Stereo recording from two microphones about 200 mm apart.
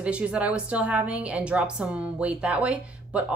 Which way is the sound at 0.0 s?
5° right (ahead or behind).